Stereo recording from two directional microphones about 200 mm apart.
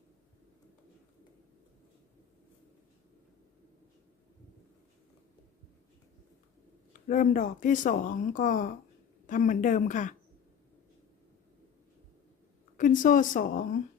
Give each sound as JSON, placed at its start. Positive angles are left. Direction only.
{"t": 6.9, "sound": "speech", "side_deg": 40}
{"t": 12.7, "sound": "speech", "side_deg": 40}